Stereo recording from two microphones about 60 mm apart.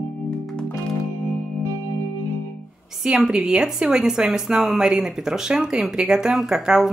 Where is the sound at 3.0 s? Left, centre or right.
Centre.